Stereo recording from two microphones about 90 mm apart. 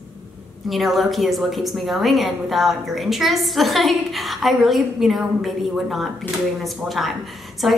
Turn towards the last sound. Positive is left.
turn(degrees=0)  # may be behind; listen again after turning